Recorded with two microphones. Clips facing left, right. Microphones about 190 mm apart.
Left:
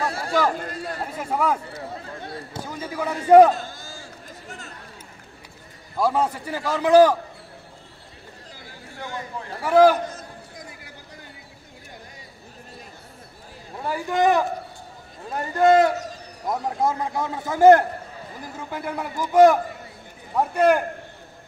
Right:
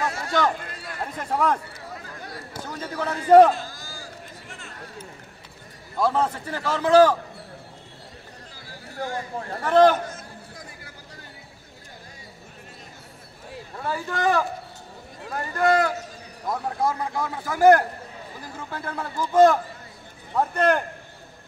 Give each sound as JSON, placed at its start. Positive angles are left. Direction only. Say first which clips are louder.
{"t": 0.0, "sound": "a sound", "louder": "left 1 dB", "side_deg": 30}
{"t": 1.1, "sound": "speech", "louder": "even", "side_deg": 5}
{"t": 2.0, "sound": "a sound", "louder": "left 4 dB", "side_deg": 25}
{"t": 2.6, "sound": "a man's voice", "louder": "left 1 dB", "side_deg": 10}
{"t": 3.6, "sound": "a sound", "louder": "left 1 dB", "side_deg": 25}
{"t": 5.9, "sound": "a man's voice", "louder": "left 1 dB", "side_deg": 10}
{"t": 8.9, "sound": "speech", "louder": "right 3 dB", "side_deg": -40}
{"t": 9.6, "sound": "a man's voice", "louder": "left 1 dB", "side_deg": 10}
{"t": 13.7, "sound": "a man's voice", "louder": "left 5 dB", "side_deg": 15}